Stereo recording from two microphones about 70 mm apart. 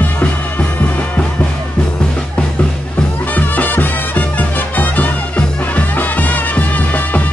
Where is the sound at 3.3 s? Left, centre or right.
Left.